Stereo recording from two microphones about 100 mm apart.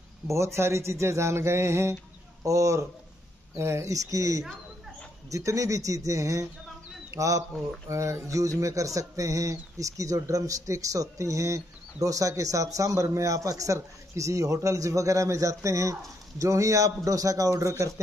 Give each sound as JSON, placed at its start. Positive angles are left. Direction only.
{"t": 0.3, "sound": "a man's voice", "side_deg": -30}